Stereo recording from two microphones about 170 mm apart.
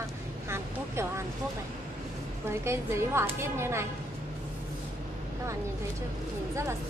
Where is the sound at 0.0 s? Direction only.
15° right (ahead or behind).